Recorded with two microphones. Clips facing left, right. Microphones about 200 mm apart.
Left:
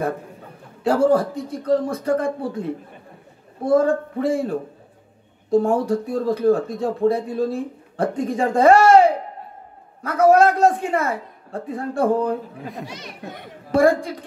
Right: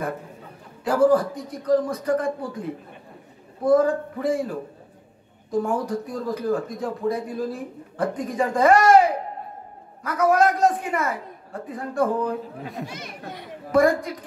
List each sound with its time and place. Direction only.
0.8 s speech: 25° left (ahead or behind)
3.6 s speech: 25° left (ahead or behind)
12.5 s a child's voice: centre (ahead or behind)
12.8 s speech: 50° right (ahead or behind)
13.7 s speech: 30° left (ahead or behind)